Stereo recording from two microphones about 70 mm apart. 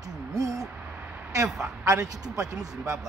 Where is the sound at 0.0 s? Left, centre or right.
Right.